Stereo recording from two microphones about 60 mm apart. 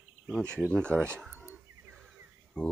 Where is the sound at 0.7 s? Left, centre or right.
Centre.